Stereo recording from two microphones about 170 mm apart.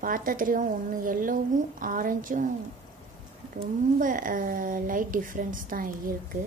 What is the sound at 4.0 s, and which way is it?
A woman's voice, 50° right (ahead or behind).